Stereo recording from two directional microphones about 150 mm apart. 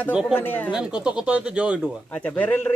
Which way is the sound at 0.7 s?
5° right (ahead or behind).